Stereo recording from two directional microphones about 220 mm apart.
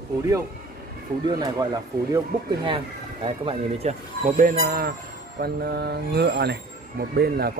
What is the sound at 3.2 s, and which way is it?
Speech, 25° right (ahead or behind).